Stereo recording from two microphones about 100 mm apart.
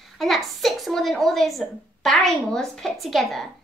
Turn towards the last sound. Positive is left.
turn(degrees=0)  # may be behind; listen again after turning